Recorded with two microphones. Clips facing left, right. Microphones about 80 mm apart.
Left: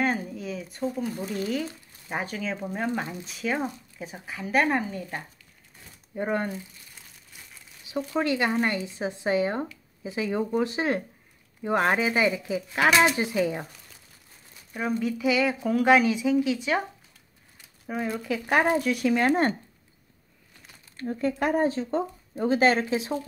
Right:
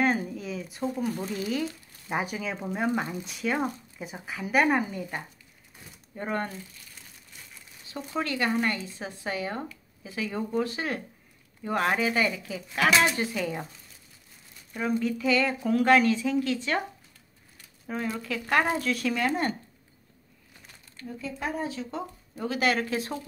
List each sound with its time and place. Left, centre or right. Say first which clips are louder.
0.0 s a sound: right 1 dB; centre
1.1 s speech: left 1 dB; centre
6.1 s speech: left 4 dB; centre
7.9 s speech: left 5 dB; centre
14.7 s speech: even; centre
17.8 s speech: left 3 dB; centre
19.1 s speech: left 7 dB; left
20.9 s speech: left 8 dB; left
21.2 s speech: left 8 dB; left
21.6 s speech: left 8 dB; left